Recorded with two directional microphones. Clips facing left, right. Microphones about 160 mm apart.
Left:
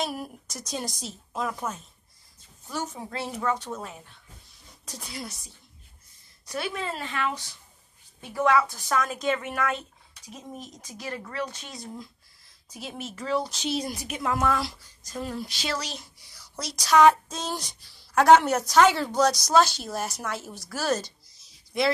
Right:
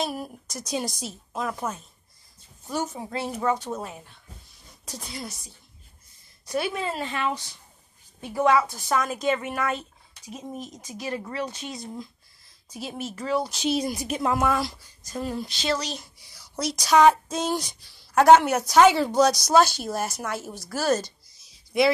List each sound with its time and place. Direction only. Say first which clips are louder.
0.0 s a woman's voice: right 2 dB; centre (ahead or behind)
6.4 s a woman's voice: right 4 dB; 15° right (ahead or behind)
7.0 s a woman's voice: right 2 dB; 25° right (ahead or behind); by 9.8 s 5° right (ahead or behind)
10.5 s speech: right 4 dB; 20° right (ahead or behind)
12.7 s speech: right 4 dB; 5° right (ahead or behind)
14.0 s speech: right 4 dB; 35° right (ahead or behind)
14.3 s a woman's voice: right 1 dB; 15° right (ahead or behind)
14.6 s speech: right 3 dB; centre (ahead or behind)
16.5 s a woman's voice: right 1 dB; 15° right (ahead or behind)